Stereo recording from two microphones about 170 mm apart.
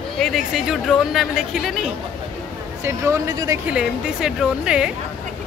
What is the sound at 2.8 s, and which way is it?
Speech, 20° right (ahead or behind).